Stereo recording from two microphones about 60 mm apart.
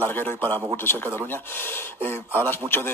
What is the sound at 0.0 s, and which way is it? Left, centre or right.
Speech, left.